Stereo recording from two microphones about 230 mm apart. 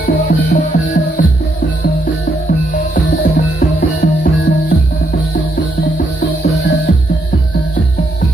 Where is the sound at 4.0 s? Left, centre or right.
Left.